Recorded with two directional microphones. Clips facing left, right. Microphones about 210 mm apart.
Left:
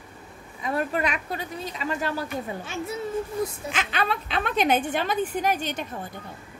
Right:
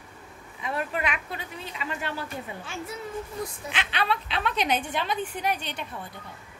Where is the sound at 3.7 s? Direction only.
45° left (ahead or behind).